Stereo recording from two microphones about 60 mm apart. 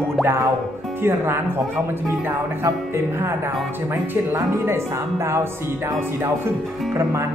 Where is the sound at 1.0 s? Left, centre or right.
Right.